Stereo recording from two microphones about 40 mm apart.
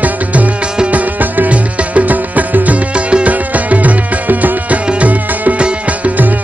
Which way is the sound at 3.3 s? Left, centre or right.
Right.